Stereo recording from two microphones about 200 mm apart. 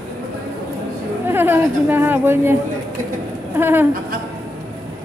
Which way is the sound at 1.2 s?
10° right (ahead or behind).